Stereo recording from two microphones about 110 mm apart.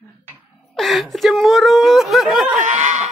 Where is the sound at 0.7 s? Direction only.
Centre (ahead or behind).